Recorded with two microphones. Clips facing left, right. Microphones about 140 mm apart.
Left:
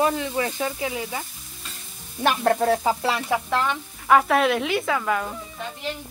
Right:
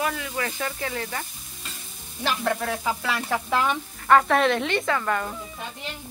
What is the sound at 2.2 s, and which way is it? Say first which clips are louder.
Frying: left 6 dB; 45° left (ahead or behind).